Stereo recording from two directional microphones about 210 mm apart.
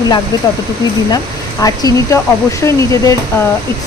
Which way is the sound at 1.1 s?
15° left (ahead or behind).